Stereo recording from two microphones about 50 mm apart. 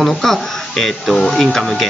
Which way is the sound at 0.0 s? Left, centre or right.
Centre.